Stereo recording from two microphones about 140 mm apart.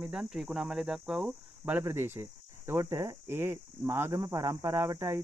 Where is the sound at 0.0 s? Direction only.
5° right (ahead or behind).